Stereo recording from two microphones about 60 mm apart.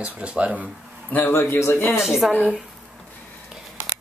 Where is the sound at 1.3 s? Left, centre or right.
Left.